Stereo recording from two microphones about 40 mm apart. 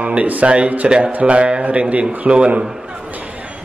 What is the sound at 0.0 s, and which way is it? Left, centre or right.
Speech, right.